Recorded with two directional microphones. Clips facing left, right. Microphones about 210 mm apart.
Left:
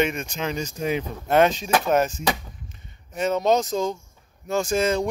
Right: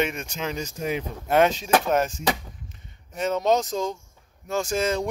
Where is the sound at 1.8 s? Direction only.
Centre (ahead or behind).